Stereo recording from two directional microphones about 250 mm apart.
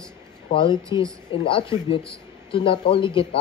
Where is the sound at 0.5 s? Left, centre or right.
Centre.